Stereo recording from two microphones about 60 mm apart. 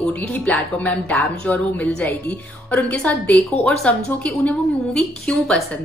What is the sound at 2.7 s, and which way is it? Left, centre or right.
Speech, left.